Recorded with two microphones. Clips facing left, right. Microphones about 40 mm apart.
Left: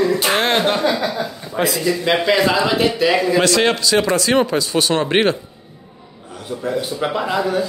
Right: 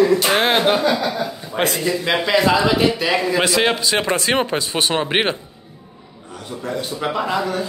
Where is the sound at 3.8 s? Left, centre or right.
Right.